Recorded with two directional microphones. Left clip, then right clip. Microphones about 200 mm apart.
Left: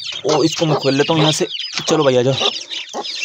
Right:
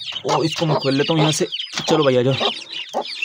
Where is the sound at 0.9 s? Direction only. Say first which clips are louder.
Left 4 dB; centre (ahead or behind).